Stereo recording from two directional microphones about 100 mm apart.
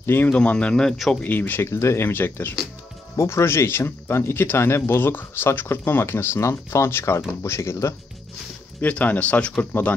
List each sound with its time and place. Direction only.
0.0 s speech: 20° left (ahead or behind)
0.3 s speech: 10° left (ahead or behind)
1.2 s speech: 20° left (ahead or behind)
8.8 s speech: 15° left (ahead or behind)